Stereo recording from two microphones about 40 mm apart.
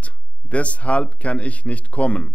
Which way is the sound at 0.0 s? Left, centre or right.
Left.